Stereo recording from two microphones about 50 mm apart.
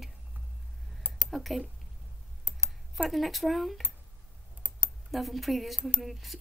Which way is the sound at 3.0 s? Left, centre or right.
Centre.